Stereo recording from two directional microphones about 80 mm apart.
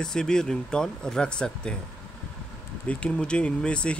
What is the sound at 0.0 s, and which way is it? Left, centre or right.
Speech, centre.